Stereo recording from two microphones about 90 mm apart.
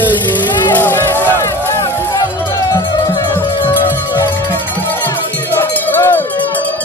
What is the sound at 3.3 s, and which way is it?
Music, 25° left (ahead or behind).